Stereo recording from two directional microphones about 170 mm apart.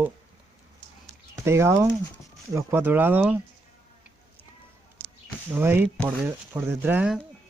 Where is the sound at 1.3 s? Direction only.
15° right (ahead or behind).